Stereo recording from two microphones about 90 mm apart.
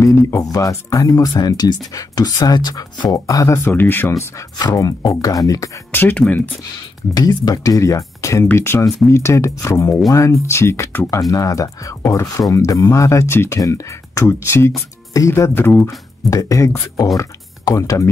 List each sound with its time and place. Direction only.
0.0 s speech: 35° left (ahead or behind)
4.6 s speech: 45° left (ahead or behind)
5.9 s speech: 20° left (ahead or behind)
7.2 s speech: 45° left (ahead or behind); by 11.1 s 25° left (ahead or behind)
11.1 s speech: 40° left (ahead or behind); by 15.9 s 25° left (ahead or behind)
16.3 s speech: 35° left (ahead or behind)